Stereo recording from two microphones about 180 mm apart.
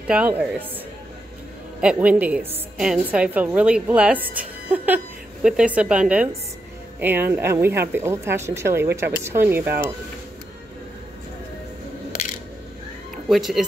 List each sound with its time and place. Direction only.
0.0 s a woman's voice: 5° right (ahead or behind)
1.8 s a woman's voice: 5° right (ahead or behind)
13.3 s speech: centre (ahead or behind)